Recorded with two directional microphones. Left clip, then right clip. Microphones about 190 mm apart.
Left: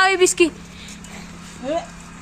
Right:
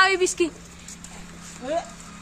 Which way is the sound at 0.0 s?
25° left (ahead or behind).